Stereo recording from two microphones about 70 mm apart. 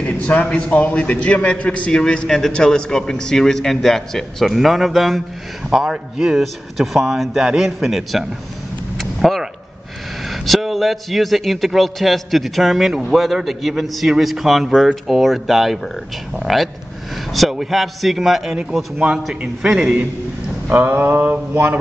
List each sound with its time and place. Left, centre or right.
0.0 s a man's voice: left; by 8.3 s centre
8.9 s vehicle: centre
10.3 s a man's voice: centre
20.7 s mantra: right